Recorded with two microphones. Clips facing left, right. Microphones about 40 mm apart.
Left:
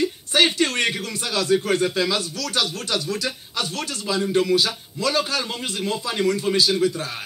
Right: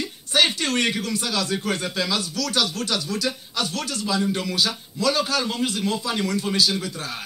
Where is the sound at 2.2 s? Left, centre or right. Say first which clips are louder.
Right 1 dB; left.